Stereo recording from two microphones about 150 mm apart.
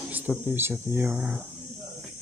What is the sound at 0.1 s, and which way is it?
Speech, 10° right (ahead or behind).